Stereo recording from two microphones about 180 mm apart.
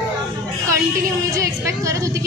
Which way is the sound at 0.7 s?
15° right (ahead or behind).